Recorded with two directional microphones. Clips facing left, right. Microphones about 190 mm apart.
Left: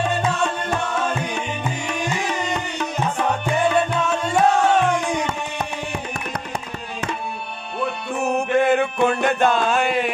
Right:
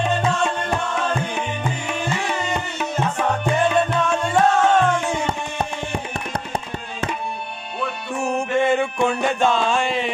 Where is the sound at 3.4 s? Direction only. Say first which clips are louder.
Right 1 dB; centre (ahead or behind).